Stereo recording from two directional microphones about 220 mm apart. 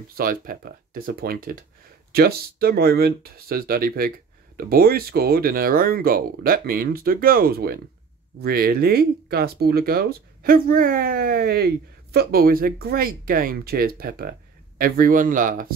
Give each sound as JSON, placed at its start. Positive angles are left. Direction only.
{"t": 0.1, "sound": "speech", "side_deg": -40}